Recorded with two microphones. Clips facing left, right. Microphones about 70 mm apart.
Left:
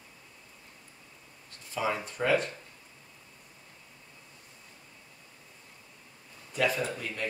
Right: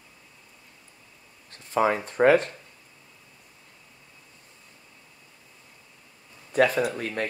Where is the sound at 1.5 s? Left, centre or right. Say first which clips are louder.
Right 8 dB; right.